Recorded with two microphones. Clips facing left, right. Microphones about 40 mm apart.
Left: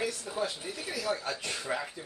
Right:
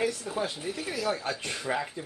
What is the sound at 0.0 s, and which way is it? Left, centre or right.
Speech, centre.